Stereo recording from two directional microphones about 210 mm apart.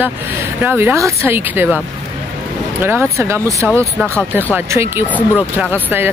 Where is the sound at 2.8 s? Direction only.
10° right (ahead or behind).